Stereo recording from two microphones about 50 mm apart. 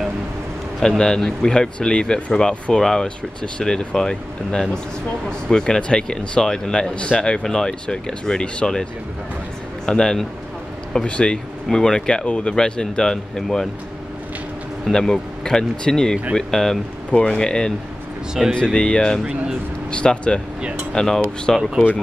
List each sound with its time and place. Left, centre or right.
0.7 s speech: centre
2.8 s speech: centre
9.8 s speech: centre
14.9 s speech: centre
17.1 s speech: left; by 21.6 s centre